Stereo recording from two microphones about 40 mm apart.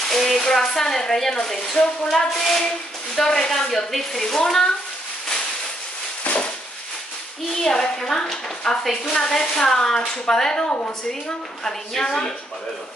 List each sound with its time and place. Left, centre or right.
0.1 s speech: centre
7.6 s speech: centre
11.6 s speech: centre